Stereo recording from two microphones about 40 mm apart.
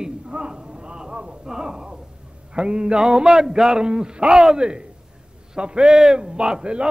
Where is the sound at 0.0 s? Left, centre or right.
Centre.